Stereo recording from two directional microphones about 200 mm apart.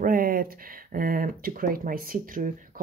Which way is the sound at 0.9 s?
45° right (ahead or behind).